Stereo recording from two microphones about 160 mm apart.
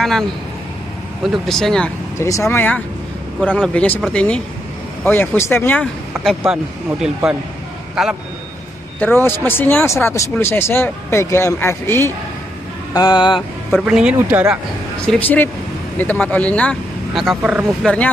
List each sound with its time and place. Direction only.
1.2 s speech: centre (ahead or behind)
2.1 s speech: 20° left (ahead or behind)
6.4 s speech: 5° right (ahead or behind)
9.0 s speech: 15° left (ahead or behind)
12.9 s speech: 25° left (ahead or behind)
13.7 s speech: 5° right (ahead or behind)
15.0 s speech: 10° left (ahead or behind); by 17.6 s 5° right (ahead or behind)